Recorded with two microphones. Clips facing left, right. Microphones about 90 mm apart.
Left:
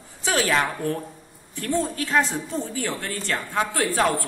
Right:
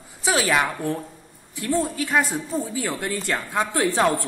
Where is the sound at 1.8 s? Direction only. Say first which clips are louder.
Even; 15° right (ahead or behind).